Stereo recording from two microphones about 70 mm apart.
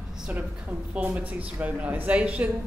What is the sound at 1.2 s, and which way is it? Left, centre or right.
Speech, right.